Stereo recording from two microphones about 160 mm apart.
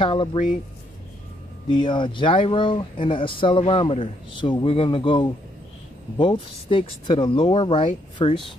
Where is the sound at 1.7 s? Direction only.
30° left (ahead or behind).